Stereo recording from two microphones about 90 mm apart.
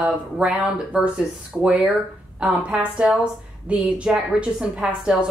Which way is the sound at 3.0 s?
15° right (ahead or behind).